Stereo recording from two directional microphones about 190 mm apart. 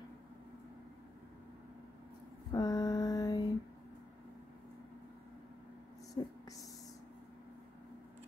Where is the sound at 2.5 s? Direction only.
20° left (ahead or behind).